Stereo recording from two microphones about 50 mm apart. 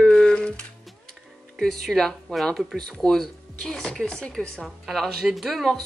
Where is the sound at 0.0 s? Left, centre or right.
Centre.